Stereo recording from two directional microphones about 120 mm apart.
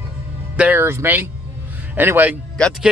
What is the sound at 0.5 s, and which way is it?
Speech, 15° right (ahead or behind).